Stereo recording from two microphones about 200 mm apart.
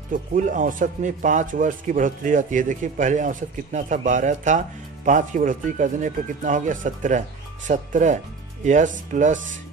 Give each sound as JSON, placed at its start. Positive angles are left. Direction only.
{"t": 0.1, "sound": "speech", "side_deg": -40}